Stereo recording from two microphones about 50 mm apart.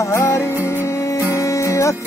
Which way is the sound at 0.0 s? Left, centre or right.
Left.